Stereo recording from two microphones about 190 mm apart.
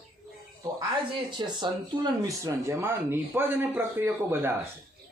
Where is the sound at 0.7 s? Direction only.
25° right (ahead or behind).